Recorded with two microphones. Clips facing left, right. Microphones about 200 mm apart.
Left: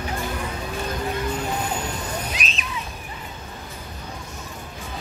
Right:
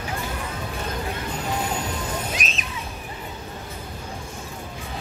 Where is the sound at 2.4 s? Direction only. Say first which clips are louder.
Right 1 dB; 45° right (ahead or behind).